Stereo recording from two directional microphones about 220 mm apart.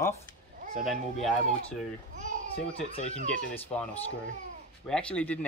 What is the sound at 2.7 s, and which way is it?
Speech, 25° left (ahead or behind).